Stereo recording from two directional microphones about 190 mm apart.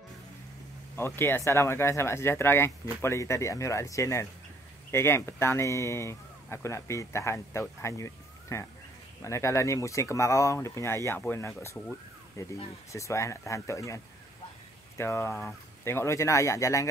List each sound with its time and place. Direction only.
0.9 s speech: 10° left (ahead or behind)